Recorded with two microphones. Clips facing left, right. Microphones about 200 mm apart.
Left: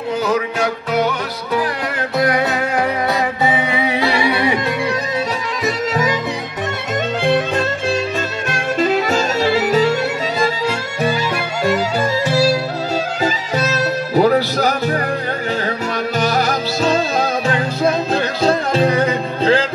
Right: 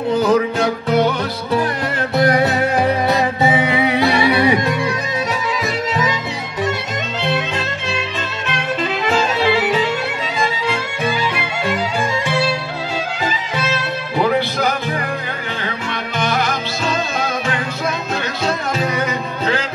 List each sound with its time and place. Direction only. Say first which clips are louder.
0.1 s music: right 3 dB; 30° right (ahead or behind)
2.8 s music: right 2 dB; 20° right (ahead or behind)
7.2 s music: left 4 dB; 50° left (ahead or behind)
16.2 s music: left 1 dB; 40° left (ahead or behind)